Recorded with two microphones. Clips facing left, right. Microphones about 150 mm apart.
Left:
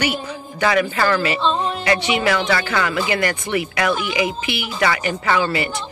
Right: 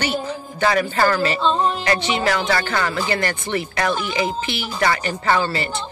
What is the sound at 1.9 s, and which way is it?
Speech, 10° left (ahead or behind).